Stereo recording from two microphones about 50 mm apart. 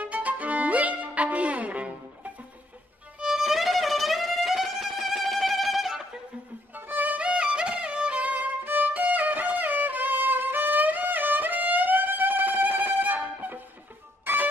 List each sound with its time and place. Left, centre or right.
0.0 s music: right
3.2 s music: centre
6.7 s violin: right
7.2 s music: centre; by 14.5 s right